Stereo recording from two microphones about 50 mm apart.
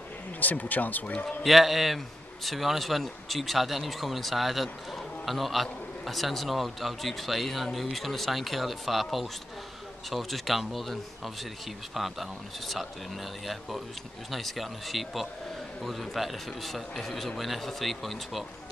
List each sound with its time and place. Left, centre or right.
0.4 s speech: left
1.4 s a man's voice: centre